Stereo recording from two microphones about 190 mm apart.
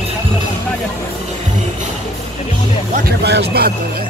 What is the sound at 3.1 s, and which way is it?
Speech, 60° right (ahead or behind).